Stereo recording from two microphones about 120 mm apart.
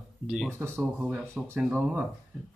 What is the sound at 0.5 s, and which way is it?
Speech, 20° right (ahead or behind).